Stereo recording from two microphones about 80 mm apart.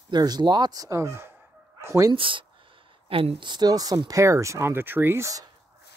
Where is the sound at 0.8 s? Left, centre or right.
Right.